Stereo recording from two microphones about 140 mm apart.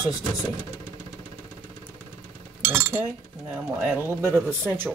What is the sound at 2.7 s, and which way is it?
Speech, 15° right (ahead or behind).